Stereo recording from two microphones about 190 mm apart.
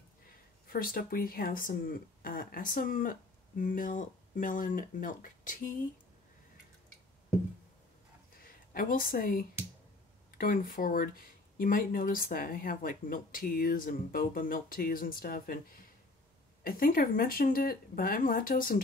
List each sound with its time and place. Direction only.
0.7 s speech: 50° left (ahead or behind)
8.4 s speech: 50° left (ahead or behind)